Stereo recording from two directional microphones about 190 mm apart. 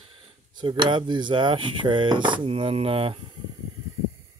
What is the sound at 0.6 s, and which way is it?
Speech, 25° right (ahead or behind).